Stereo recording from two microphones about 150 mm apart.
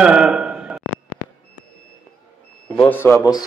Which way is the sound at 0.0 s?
5° right (ahead or behind).